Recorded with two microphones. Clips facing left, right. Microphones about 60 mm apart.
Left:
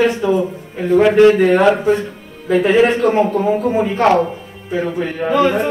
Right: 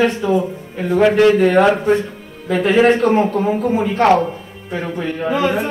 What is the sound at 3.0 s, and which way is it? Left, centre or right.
Speech, centre.